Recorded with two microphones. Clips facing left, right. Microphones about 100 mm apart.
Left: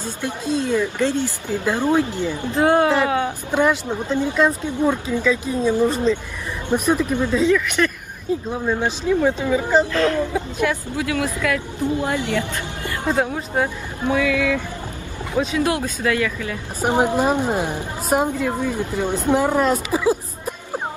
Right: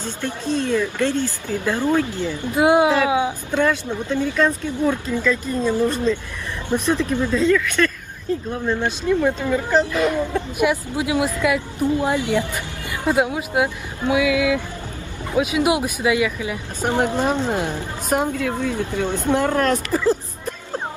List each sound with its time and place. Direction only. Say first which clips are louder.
0.0 s speech: even; 10° left (ahead or behind)
2.5 s a woman's voice: right 1 dB; 15° right (ahead or behind)
3.5 s speech: left 2 dB; 15° left (ahead or behind)
9.9 s a woman's voice: left 1 dB; 10° right (ahead or behind)
16.8 s a woman's voice: left 2 dB; 10° left (ahead or behind)